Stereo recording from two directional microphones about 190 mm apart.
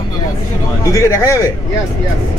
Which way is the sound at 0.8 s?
15° left (ahead or behind).